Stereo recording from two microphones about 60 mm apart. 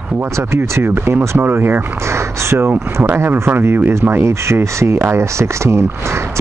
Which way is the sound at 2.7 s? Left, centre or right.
Right.